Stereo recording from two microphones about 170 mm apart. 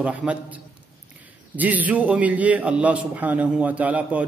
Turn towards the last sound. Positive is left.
turn(degrees=-10)  # may be behind; listen again after turning